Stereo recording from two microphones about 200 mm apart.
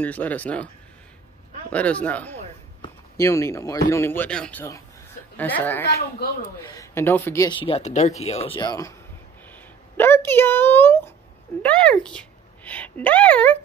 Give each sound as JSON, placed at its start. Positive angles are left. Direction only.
{"t": 0.0, "sound": "speech", "side_deg": 10}
{"t": 1.7, "sound": "a woman's voice", "side_deg": 5}